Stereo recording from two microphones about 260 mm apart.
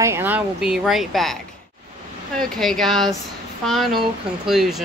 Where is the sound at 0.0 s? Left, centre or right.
Centre.